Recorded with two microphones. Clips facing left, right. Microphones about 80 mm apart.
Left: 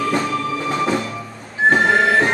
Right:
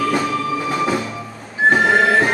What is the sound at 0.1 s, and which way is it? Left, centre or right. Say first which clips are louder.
Music: right 1 dB; centre.